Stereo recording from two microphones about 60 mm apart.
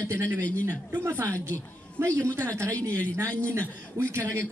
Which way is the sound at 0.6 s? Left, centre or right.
Right.